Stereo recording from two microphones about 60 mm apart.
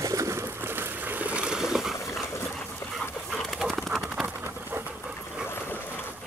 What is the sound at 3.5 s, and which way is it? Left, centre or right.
Bird, centre.